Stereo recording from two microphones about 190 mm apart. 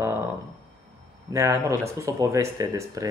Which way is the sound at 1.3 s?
15° right (ahead or behind).